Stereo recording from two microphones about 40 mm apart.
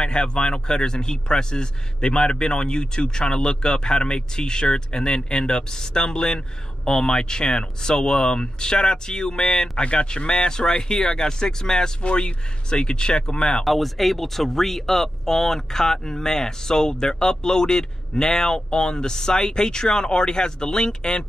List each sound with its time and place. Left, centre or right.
0.0 s speech: left
13.7 s speech: centre; by 21.3 s left